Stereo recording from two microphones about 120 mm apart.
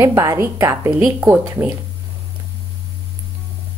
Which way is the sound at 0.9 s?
5° right (ahead or behind).